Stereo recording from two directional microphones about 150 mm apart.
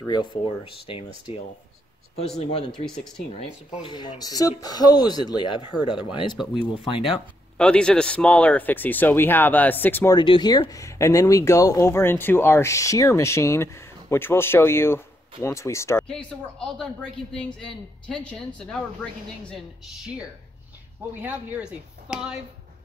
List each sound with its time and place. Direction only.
0.0 s speech: 30° left (ahead or behind)
2.1 s speech: 45° left (ahead or behind)
2.7 s a woman's voice: 5° left (ahead or behind)
3.3 s speech: 45° left (ahead or behind)
4.2 s speech: 25° left (ahead or behind)
6.3 s a woman's voice: centre (ahead or behind)
6.8 s speech: 35° left (ahead or behind)
7.5 s speech: 5° left (ahead or behind)
10.1 s speech: 30° left (ahead or behind)
16.1 s a woman's voice: 5° left (ahead or behind)
21.2 s speech: 10° right (ahead or behind)